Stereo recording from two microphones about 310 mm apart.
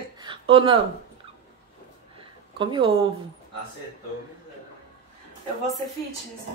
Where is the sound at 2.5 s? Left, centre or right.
Centre.